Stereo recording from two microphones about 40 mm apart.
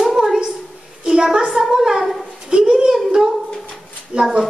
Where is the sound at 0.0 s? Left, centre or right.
Centre.